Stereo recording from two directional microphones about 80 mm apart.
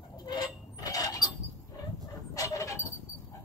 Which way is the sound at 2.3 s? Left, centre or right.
Left.